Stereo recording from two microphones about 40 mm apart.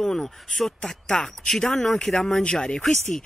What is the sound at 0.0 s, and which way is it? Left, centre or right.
Speech, centre.